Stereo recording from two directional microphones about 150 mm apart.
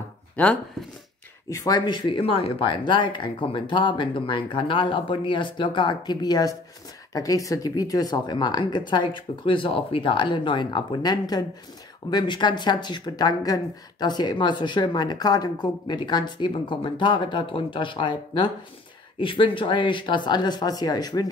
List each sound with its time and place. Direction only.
0.4 s speech: 5° left (ahead or behind)
1.5 s speech: 25° left (ahead or behind)